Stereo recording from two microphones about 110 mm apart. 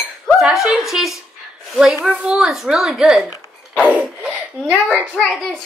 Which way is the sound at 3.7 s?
15° right (ahead or behind).